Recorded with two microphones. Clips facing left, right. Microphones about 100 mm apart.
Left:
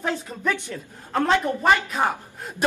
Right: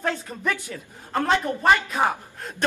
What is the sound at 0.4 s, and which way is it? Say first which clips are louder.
A woman's voice: left 1 dB; 5° right (ahead or behind).